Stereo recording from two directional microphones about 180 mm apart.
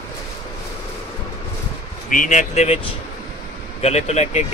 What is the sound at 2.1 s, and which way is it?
Speech, 45° left (ahead or behind).